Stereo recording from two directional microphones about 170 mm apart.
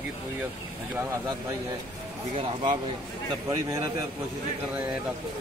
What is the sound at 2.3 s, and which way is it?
Speech, 30° right (ahead or behind).